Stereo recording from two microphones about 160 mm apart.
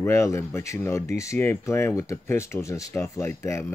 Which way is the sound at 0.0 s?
15° left (ahead or behind).